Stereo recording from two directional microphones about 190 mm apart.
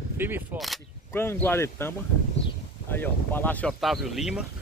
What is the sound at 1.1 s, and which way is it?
Speech, 10° left (ahead or behind).